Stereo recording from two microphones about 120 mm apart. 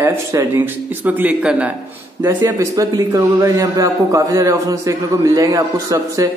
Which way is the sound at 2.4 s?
25° right (ahead or behind).